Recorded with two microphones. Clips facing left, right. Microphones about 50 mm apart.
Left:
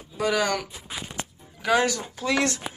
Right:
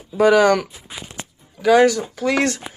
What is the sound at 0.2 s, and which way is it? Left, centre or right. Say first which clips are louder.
Speech: right 11 dB; right.